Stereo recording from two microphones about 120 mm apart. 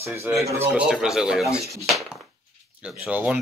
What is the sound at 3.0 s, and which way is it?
Speech, 10° right (ahead or behind).